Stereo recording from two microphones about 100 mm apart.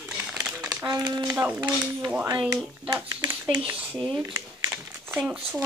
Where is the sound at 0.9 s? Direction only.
45° right (ahead or behind).